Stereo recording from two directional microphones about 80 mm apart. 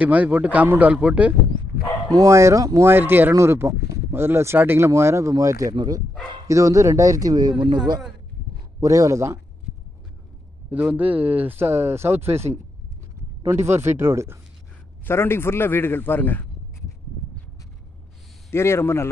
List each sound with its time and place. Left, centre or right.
0.0 s speech: centre
2.1 s speech: right
2.8 s speech: right
8.7 s speech: right
10.7 s speech: right
15.0 s a man's voice: left
18.5 s a man's voice: left